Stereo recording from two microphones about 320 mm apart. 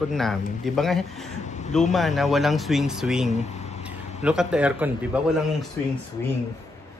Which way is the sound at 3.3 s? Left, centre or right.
Left.